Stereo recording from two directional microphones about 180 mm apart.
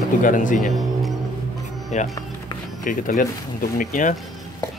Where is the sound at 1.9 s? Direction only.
40° left (ahead or behind).